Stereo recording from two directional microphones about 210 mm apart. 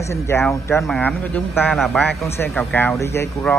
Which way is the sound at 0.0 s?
10° left (ahead or behind).